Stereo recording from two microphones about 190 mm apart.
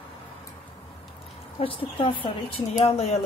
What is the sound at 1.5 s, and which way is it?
Speech, 30° left (ahead or behind).